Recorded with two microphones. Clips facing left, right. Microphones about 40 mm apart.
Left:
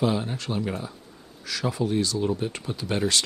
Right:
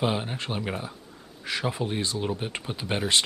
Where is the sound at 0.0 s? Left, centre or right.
Right.